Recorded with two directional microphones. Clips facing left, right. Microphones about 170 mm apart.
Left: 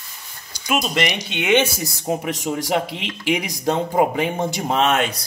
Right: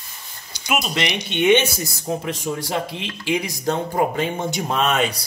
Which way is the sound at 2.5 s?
30° left (ahead or behind).